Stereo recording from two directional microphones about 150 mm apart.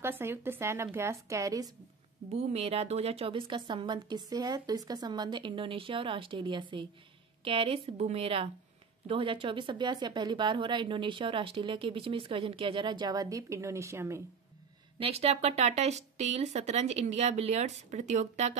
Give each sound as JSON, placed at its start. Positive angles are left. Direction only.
{"t": 0.0, "sound": "a woman's voice", "side_deg": -15}
{"t": 2.3, "sound": "a woman's voice", "side_deg": -40}
{"t": 15.0, "sound": "speech", "side_deg": -40}